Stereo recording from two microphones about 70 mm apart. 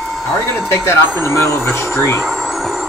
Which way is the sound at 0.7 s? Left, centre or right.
Left.